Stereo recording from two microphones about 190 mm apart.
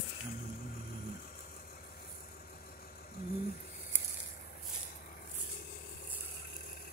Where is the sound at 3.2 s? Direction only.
55° left (ahead or behind).